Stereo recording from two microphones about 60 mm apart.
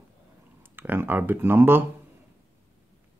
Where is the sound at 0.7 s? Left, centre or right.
Right.